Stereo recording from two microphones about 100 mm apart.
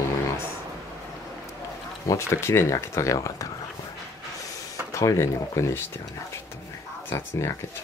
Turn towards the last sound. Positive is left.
turn(degrees=25)  # may be behind; listen again after turning